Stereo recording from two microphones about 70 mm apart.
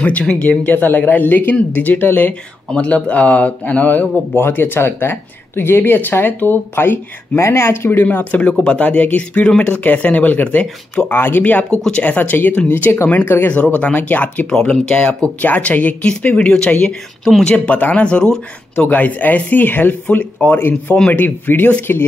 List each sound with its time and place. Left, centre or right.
0.0 s speech: centre
2.7 s speech: centre
11.1 s speech: left
14.5 s speech: centre
17.6 s speech: left
18.9 s speech: left